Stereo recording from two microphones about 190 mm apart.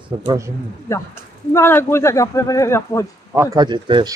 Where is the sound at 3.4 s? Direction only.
25° right (ahead or behind).